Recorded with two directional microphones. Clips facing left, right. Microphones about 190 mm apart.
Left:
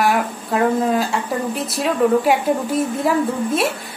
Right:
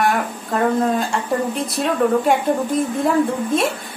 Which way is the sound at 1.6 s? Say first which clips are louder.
Left 3 dB; 5° left (ahead or behind).